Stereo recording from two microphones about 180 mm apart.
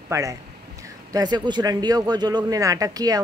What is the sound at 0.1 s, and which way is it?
Speech, 20° right (ahead or behind).